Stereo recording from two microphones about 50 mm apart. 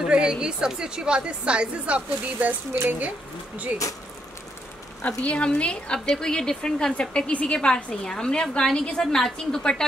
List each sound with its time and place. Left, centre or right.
0.0 s a woman's voice: centre
2.7 s speech: right
5.0 s a woman's voice: left